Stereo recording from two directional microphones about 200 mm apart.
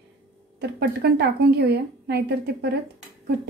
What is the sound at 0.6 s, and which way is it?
A woman's voice, 55° right (ahead or behind).